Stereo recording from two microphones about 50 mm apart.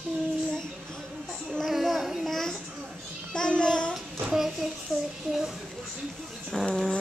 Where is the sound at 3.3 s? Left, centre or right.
Centre.